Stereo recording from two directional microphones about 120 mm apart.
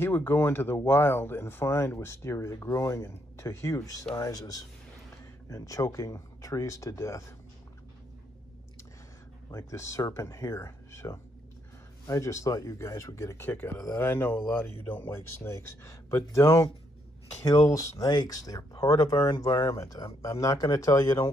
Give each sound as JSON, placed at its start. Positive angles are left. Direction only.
{"t": 0.0, "sound": "speech", "side_deg": 15}
{"t": 9.5, "sound": "speech", "side_deg": 25}